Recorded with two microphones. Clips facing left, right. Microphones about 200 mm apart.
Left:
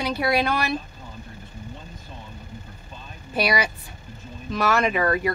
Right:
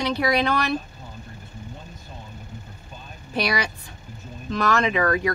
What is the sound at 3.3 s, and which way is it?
Speech, 5° left (ahead or behind).